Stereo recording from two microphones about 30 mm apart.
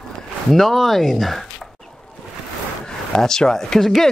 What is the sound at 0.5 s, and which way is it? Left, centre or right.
Speech, centre.